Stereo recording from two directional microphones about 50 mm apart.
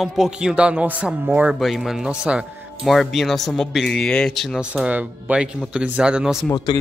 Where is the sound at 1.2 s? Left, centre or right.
Right.